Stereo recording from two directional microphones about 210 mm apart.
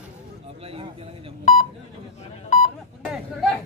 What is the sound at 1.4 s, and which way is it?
Telephone dialing, 35° left (ahead or behind).